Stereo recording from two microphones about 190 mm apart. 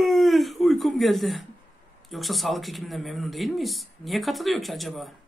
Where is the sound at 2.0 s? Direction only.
Centre (ahead or behind).